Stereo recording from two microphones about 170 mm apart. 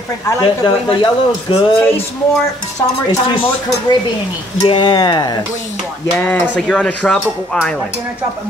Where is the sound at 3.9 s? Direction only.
25° left (ahead or behind).